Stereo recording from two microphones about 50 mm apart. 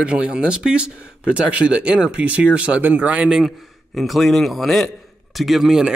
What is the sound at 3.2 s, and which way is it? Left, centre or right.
Speech, centre.